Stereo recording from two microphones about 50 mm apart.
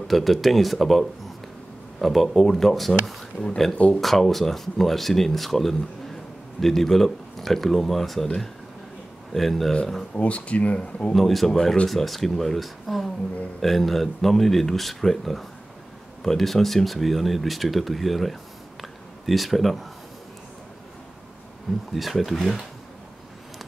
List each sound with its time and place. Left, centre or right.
0.1 s speech: centre
9.3 s speech: centre
10.1 s speech: left
11.1 s speech: centre
11.5 s speech: centre
11.9 s speech: centre
21.9 s speech: centre